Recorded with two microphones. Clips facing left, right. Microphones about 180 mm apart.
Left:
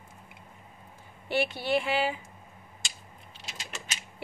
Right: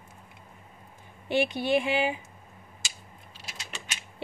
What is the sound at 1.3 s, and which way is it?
Speech, 15° right (ahead or behind).